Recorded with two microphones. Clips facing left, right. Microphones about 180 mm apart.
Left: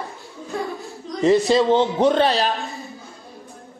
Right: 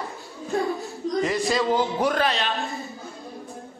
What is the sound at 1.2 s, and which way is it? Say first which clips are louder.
A man's voice: left 9 dB; 25° left (ahead or behind).